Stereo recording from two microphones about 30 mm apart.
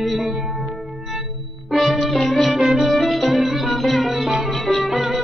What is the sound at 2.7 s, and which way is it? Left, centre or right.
Music, centre.